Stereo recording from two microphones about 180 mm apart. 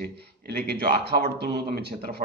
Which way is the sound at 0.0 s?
65° right (ahead or behind).